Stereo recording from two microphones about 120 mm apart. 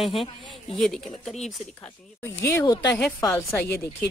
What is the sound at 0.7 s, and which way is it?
Speech, 5° left (ahead or behind).